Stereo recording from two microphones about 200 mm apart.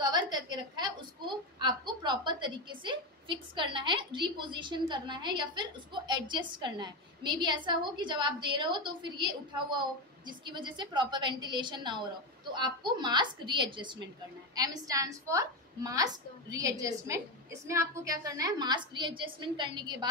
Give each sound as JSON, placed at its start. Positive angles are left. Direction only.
{"t": 0.0, "sound": "a woman's voice", "side_deg": -20}